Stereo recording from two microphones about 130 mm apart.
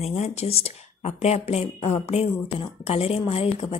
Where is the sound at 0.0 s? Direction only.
55° left (ahead or behind).